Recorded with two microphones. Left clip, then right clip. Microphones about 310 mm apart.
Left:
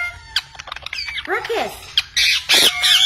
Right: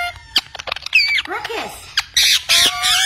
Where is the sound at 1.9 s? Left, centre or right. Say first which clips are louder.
Right 2 dB; centre.